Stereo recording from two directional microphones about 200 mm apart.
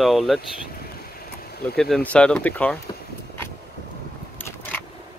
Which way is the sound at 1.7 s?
Centre (ahead or behind).